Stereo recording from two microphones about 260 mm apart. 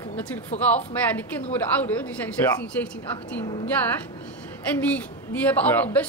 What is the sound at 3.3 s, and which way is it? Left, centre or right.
Speech, centre.